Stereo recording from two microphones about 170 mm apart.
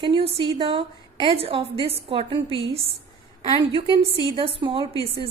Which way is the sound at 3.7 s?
30° right (ahead or behind).